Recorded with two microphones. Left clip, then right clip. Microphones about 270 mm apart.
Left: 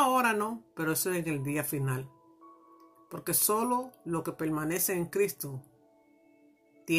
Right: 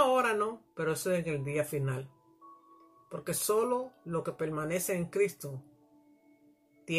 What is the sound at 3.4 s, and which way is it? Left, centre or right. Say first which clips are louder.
Speech: even; left.